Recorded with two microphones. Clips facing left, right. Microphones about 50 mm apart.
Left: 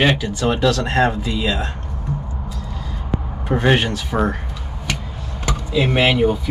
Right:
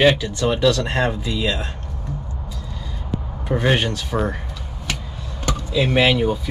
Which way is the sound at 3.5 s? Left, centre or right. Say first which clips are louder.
Left 3 dB; centre.